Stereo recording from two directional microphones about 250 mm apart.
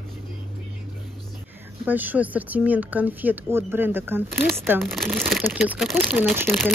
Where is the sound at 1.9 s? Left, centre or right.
Centre.